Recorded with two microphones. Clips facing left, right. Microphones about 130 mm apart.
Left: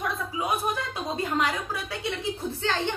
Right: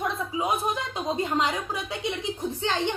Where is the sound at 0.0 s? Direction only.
25° right (ahead or behind).